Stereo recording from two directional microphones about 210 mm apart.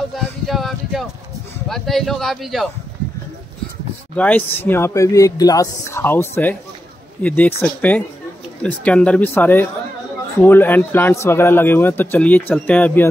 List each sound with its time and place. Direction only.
0.1 s a sound: centre (ahead or behind)
1.7 s speech: centre (ahead or behind)
4.2 s a man's voice: 10° left (ahead or behind)